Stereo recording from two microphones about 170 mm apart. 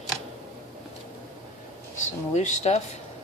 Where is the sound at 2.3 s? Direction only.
40° left (ahead or behind).